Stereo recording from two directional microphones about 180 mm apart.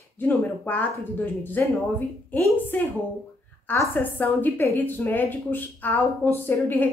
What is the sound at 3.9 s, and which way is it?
A woman's voice, 10° left (ahead or behind).